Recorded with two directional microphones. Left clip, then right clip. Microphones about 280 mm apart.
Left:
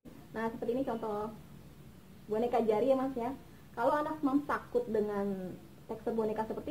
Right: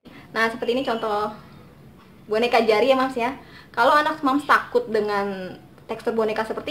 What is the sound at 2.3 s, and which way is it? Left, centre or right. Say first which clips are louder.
A woman's voice: right 12 dB; centre.